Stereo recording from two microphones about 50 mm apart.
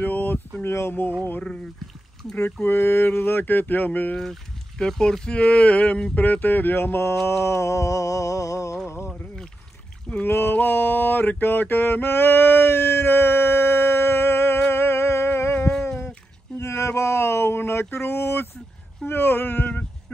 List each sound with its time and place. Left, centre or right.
0.0 s a sound: left
0.7 s mantra: left
2.6 s mantra: left
4.2 s speech: centre
6.1 s speech: left
7.2 s a sound: left
8.8 s boat: left
10.2 s mantra: left
14.6 s music: left
16.5 s a sound: left
17.9 s mantra: left
19.0 s speech: left